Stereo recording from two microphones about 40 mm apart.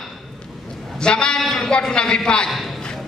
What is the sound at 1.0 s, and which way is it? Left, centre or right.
A woman's voice, left.